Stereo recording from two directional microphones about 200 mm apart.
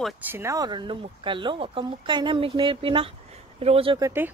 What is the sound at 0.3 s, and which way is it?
Speech, 15° right (ahead or behind).